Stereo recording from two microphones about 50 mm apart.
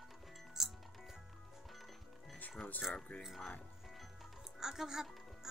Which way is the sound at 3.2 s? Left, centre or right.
Centre.